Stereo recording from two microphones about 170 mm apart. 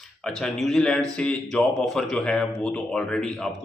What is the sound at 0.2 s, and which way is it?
Speech, centre (ahead or behind).